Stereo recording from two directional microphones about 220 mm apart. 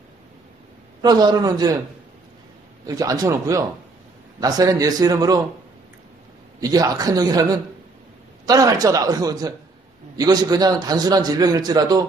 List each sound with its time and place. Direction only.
1.0 s a man's voice: 20° right (ahead or behind)
2.9 s a man's voice: 15° right (ahead or behind)
6.6 s a man's voice: 15° right (ahead or behind)